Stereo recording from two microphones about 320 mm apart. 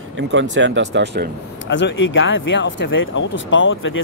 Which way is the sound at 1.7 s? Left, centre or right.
Left.